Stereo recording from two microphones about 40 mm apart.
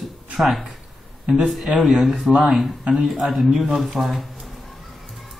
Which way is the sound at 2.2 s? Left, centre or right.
Centre.